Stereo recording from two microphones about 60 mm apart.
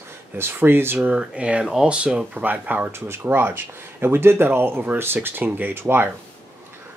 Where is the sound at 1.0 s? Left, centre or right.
Right.